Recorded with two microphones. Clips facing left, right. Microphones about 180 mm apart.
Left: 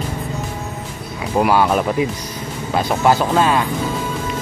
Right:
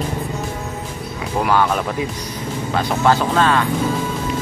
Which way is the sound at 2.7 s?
10° left (ahead or behind).